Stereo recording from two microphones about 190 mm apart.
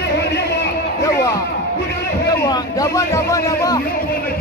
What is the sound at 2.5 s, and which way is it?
Speech, 15° left (ahead or behind).